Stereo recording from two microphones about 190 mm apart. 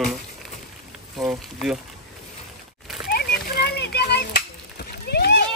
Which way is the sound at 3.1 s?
55° left (ahead or behind).